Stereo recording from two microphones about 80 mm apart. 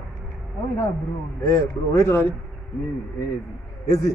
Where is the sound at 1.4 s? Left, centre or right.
Left.